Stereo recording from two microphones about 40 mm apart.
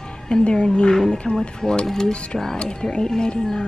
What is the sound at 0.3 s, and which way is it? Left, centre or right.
Speech, left.